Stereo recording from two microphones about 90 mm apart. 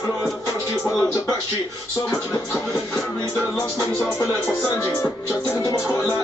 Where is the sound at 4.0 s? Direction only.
30° left (ahead or behind).